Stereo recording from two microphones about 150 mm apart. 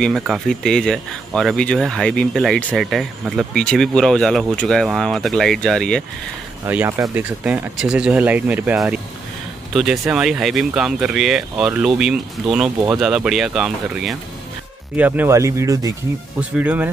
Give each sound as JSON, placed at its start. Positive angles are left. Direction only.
{"t": 0.0, "sound": "speech", "side_deg": 0}
{"t": 6.6, "sound": "speech", "side_deg": -15}
{"t": 16.3, "sound": "speech", "side_deg": -10}